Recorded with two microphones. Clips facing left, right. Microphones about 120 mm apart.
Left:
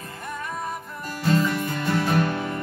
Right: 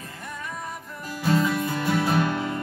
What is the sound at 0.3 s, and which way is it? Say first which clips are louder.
Music: left 4 dB; 50° left (ahead or behind).